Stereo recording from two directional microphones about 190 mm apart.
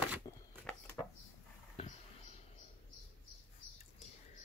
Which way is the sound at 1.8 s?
30° left (ahead or behind).